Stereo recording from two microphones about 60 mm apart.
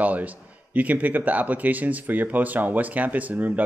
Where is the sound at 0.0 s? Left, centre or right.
Right.